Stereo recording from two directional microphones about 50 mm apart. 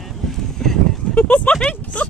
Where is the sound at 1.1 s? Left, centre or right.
Left.